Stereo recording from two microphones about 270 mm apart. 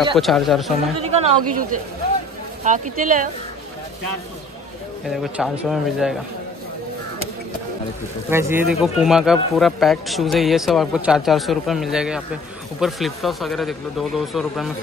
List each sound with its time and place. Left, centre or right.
0.2 s speech: centre
1.0 s speech: right
5.0 s speech: centre
8.3 s speech: centre